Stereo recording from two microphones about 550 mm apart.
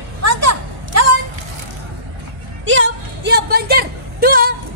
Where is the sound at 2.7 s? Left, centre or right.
Centre.